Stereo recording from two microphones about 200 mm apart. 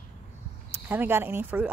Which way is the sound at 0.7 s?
10° right (ahead or behind).